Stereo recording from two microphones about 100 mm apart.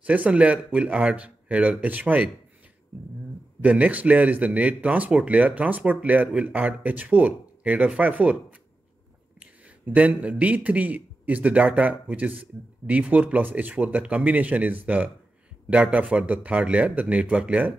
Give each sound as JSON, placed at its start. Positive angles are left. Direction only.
{"t": 0.0, "sound": "a man's voice", "side_deg": -15}
{"t": 3.6, "sound": "a man's voice", "side_deg": -15}